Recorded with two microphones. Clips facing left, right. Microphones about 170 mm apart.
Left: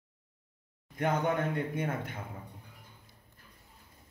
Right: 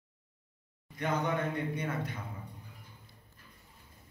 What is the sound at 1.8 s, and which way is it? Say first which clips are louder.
Speech: left 2 dB; 50° left (ahead or behind).